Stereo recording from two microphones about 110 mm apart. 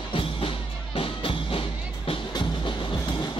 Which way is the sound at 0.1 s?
55° left (ahead or behind).